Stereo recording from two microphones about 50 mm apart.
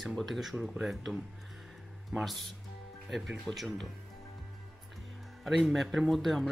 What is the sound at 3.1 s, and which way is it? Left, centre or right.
Speech, centre.